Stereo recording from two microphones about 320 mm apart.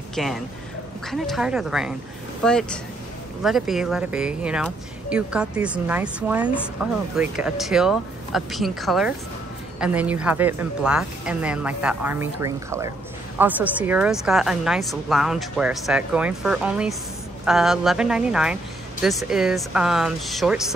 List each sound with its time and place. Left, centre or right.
0.1 s a man's voice: centre